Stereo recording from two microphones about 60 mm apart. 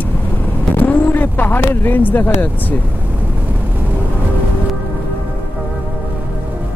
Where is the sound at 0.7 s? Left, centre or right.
Left.